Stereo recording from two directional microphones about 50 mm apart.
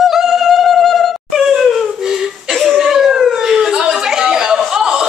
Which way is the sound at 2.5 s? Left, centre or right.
Centre.